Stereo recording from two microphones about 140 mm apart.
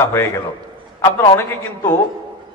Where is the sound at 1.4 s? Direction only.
20° left (ahead or behind).